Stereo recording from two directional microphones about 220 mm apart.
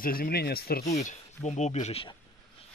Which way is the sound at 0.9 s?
30° left (ahead or behind).